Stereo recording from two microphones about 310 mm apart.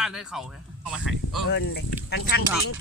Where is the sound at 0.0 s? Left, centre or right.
Centre.